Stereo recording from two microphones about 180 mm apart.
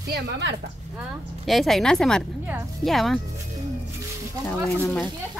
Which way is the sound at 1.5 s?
Centre (ahead or behind).